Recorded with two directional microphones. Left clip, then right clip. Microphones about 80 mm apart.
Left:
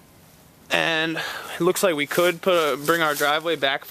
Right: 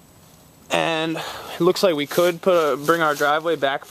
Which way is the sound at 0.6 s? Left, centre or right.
Right.